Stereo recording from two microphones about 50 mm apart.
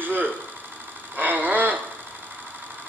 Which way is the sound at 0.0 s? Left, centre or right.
Right.